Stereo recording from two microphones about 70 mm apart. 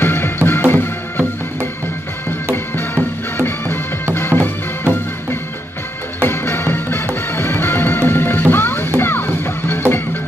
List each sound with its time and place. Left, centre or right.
0.0 s music: left